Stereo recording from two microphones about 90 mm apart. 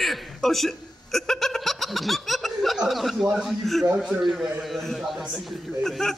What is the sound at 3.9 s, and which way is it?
Speech, 15° right (ahead or behind).